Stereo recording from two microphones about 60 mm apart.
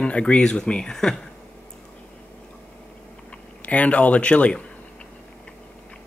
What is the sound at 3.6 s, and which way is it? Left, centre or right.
Speech, left.